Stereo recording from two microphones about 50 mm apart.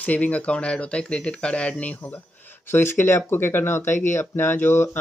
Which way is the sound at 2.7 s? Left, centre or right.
Left.